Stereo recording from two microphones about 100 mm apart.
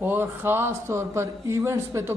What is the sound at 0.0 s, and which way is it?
A man's voice, 20° right (ahead or behind).